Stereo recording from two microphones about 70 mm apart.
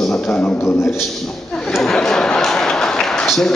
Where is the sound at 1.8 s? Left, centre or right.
Centre.